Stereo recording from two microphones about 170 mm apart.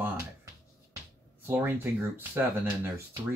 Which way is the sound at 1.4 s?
10° right (ahead or behind).